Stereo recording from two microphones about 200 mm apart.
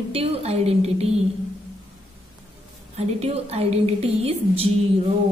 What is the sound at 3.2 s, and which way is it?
A woman's voice, 30° right (ahead or behind).